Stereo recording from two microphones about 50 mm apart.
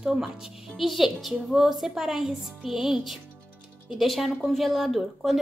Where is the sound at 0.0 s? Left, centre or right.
Centre.